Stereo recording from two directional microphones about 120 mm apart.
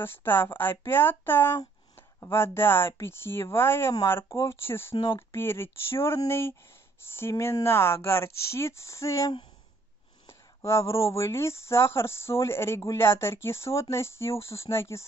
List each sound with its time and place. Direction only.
0.0 s speech: 20° left (ahead or behind)
4.9 s speech: 45° left (ahead or behind)
5.3 s speech: 20° left (ahead or behind)
10.2 s a sound: 25° left (ahead or behind)
11.1 s speech: 25° left (ahead or behind)